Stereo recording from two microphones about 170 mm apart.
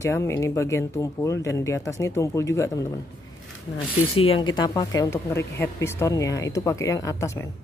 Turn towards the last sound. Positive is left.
turn(degrees=15)  # may be behind; listen again after turning